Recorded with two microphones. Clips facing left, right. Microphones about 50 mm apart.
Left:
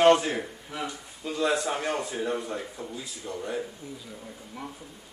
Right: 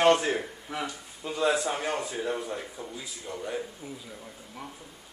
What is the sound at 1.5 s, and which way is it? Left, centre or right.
A man's voice, centre.